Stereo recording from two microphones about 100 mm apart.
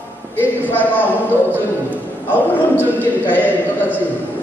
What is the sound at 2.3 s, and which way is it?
A man's voice, 20° left (ahead or behind).